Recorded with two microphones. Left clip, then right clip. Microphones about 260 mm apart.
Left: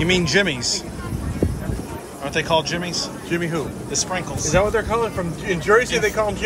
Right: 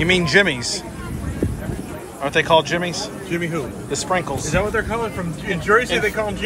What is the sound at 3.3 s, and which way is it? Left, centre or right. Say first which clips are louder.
Speech: even; left.